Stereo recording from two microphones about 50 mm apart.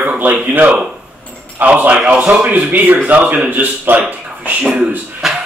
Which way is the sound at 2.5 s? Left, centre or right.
Right.